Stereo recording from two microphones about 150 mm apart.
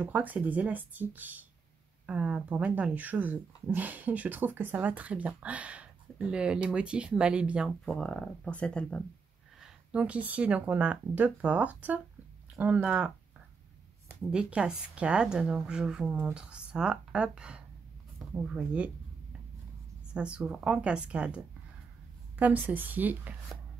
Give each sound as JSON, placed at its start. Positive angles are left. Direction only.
{"t": 0.0, "sound": "speech", "side_deg": -10}
{"t": 7.8, "sound": "speech", "side_deg": 5}
{"t": 9.6, "sound": "speech", "side_deg": -10}
{"t": 14.3, "sound": "speech", "side_deg": -5}
{"t": 20.2, "sound": "speech", "side_deg": -5}
{"t": 22.4, "sound": "speech", "side_deg": -10}